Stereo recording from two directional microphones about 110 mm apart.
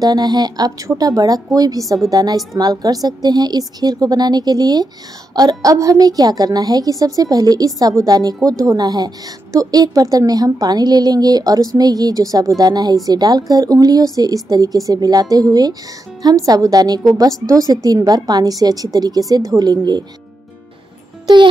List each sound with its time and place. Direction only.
0.0 s a woman's voice: 40° right (ahead or behind)